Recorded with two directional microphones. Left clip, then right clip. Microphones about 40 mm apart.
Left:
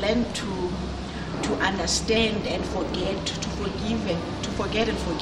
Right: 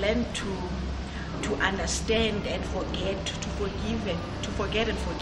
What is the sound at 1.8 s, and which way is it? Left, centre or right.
Speech, centre.